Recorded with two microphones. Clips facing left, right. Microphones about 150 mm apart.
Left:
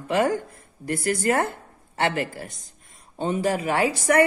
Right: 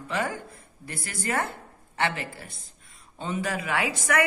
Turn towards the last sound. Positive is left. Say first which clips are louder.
# left 6 dB
turn(degrees=35)  # may be behind; listen again after turning